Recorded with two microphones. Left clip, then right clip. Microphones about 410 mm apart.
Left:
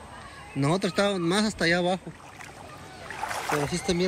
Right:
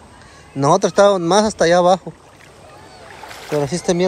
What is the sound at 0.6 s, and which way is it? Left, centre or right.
Speech, centre.